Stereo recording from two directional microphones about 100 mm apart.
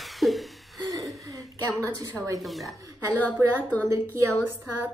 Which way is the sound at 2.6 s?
35° right (ahead or behind).